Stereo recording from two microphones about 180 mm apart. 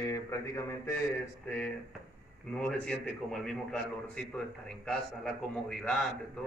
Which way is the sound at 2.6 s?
5° left (ahead or behind).